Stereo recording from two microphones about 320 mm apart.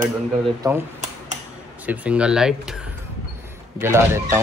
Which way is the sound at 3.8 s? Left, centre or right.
Centre.